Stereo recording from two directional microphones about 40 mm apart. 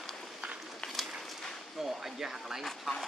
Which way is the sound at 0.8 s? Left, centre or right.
Centre.